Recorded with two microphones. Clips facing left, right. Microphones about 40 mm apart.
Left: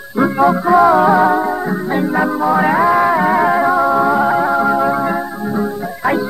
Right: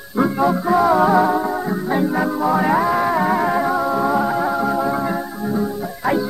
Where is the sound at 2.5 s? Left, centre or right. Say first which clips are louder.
Left 5 dB; left.